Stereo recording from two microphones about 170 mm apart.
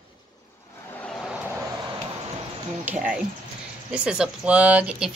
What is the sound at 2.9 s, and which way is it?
Speech, 5° right (ahead or behind).